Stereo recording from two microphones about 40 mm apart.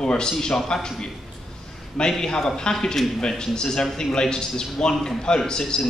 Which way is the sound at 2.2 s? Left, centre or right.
Centre.